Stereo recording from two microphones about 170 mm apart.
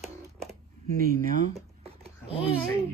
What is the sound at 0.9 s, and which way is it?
Speech, 55° right (ahead or behind).